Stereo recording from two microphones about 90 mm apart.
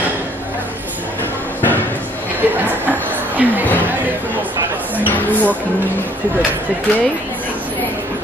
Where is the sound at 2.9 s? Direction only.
20° right (ahead or behind).